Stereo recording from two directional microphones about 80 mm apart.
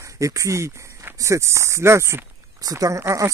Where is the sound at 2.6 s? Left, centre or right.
Right.